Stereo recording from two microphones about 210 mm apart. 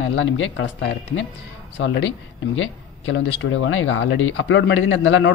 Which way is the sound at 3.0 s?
65° left (ahead or behind).